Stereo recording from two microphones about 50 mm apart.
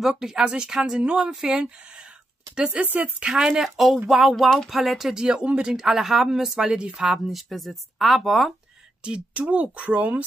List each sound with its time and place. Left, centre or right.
0.1 s speech: centre
3.4 s speech: centre
5.1 s speech: centre
5.8 s speech: centre
7.0 s speech: centre
9.0 s speech: right